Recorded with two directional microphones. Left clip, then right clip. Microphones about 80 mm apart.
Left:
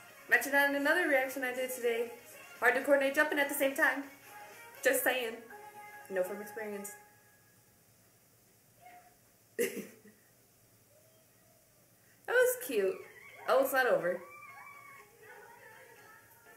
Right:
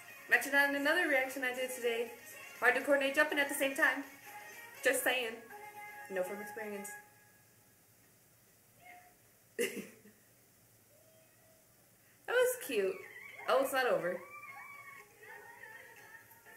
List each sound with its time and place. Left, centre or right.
0.0 s a sound: right
0.3 s a woman's voice: centre
2.0 s music: right
2.6 s a woman's voice: centre
4.0 s music: right
4.8 s a woman's voice: centre
5.5 s music: right
6.2 s speech: right
9.6 s a sound: centre
12.3 s a woman's voice: centre
13.0 s a sound: right
13.5 s a woman's voice: centre
15.2 s a sound: right